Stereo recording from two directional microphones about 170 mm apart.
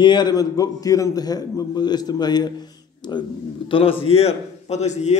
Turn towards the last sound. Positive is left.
turn(degrees=40)  # may be behind; listen again after turning